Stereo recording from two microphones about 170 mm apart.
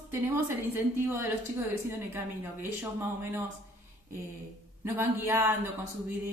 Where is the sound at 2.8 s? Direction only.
15° right (ahead or behind).